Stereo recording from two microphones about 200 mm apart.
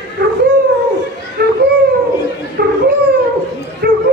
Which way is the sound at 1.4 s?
55° right (ahead or behind).